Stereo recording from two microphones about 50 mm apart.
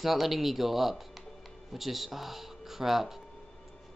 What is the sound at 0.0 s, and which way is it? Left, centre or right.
Speech, centre.